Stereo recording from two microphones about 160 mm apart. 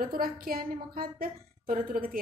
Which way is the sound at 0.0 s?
65° right (ahead or behind).